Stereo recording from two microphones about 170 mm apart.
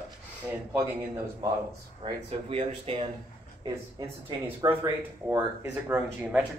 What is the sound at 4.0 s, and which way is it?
Speech, 20° right (ahead or behind).